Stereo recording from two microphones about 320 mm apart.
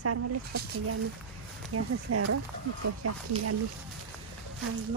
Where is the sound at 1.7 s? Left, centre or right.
Right.